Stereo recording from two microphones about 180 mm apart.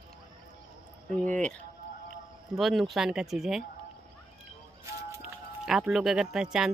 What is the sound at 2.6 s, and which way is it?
Speech, centre (ahead or behind).